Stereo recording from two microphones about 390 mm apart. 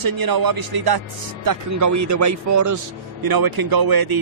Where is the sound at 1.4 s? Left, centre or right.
Right.